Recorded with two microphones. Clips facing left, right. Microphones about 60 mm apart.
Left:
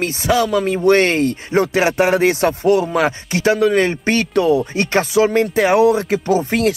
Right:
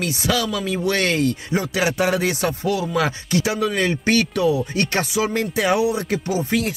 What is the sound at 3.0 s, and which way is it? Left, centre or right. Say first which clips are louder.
Speech: left 3 dB; left.